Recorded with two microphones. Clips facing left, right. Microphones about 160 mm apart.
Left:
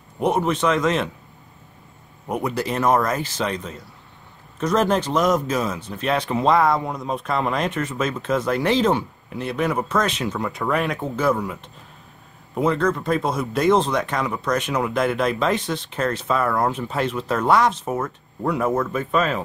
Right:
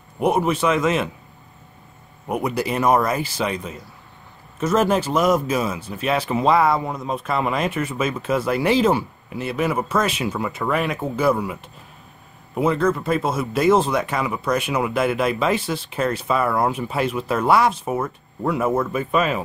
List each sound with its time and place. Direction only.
0.2 s speech: 10° right (ahead or behind)
2.2 s speech: 10° right (ahead or behind)